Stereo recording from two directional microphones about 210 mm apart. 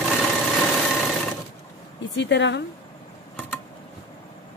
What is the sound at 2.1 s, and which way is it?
Speech, 55° left (ahead or behind).